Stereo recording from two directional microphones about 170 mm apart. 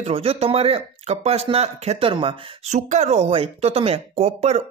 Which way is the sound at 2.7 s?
45° right (ahead or behind).